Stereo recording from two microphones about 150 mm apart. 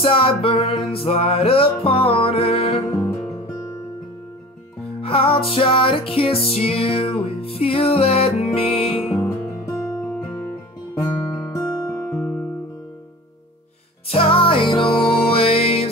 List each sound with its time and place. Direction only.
0.0 s music: 35° left (ahead or behind)
2.9 s music: 20° left (ahead or behind)
5.0 s music: 35° left (ahead or behind)
11.0 s guitar: 20° left (ahead or behind)
12.1 s music: 5° left (ahead or behind)
14.0 s music: 40° left (ahead or behind)